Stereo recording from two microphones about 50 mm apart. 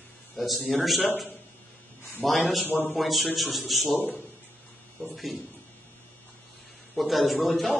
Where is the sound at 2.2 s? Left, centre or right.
Centre.